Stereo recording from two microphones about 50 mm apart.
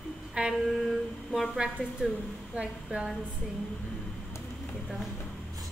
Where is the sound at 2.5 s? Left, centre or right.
Centre.